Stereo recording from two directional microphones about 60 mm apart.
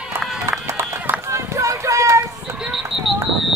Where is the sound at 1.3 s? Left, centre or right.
Right.